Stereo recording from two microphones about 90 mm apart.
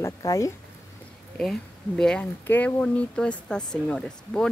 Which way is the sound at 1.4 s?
5° left (ahead or behind).